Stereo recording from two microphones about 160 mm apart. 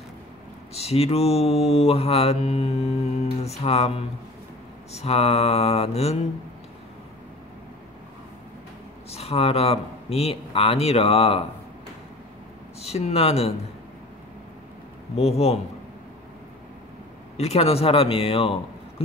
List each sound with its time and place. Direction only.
0.7 s mantra: 40° left (ahead or behind)
9.1 s mantra: 40° left (ahead or behind)
12.8 s mantra: 40° left (ahead or behind)
15.1 s mantra: 40° left (ahead or behind)
17.4 s mantra: 40° left (ahead or behind)